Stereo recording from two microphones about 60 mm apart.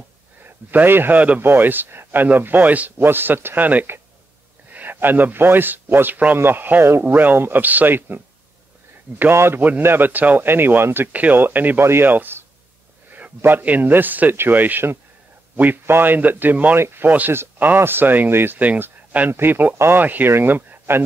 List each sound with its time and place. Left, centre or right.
0.4 s a man's voice: right
1.4 s speech: right
9.3 s a man's voice: right
9.6 s speech: right
11.1 s speech: right
13.4 s speech: right
16.7 s speech: right